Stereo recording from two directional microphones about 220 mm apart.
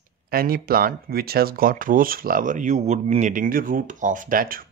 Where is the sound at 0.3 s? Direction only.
40° right (ahead or behind).